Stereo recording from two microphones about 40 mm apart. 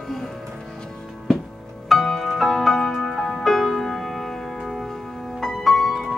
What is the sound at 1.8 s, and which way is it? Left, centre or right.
Music, centre.